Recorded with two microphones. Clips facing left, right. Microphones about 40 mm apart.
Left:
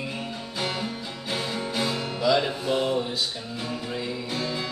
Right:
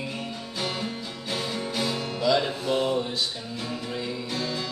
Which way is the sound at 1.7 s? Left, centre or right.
Centre.